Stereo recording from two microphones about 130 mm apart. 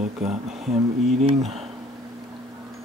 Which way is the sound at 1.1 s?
55° right (ahead or behind).